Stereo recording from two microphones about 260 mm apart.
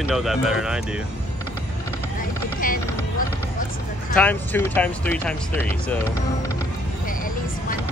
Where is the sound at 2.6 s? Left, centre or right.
Left.